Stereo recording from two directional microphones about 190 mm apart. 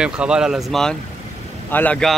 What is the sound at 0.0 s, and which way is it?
Speech, 5° right (ahead or behind).